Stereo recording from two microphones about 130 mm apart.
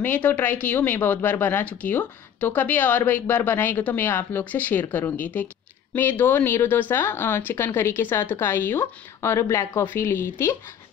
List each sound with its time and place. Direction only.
0.0 s speech: 15° left (ahead or behind)